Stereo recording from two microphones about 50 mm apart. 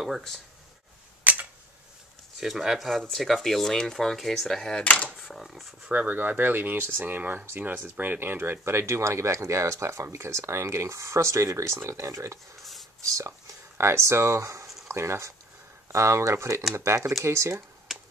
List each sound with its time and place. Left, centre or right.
1.2 s a sound: right
2.4 s speech: centre
4.8 s speech: left
5.2 s speech: centre
5.9 s speech: right
12.6 s whispering: centre
13.7 s speech: right
14.9 s speech: right
16.7 s speech: right
17.9 s finger snapping: centre